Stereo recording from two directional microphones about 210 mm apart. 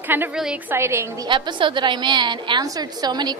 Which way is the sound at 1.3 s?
20° right (ahead or behind).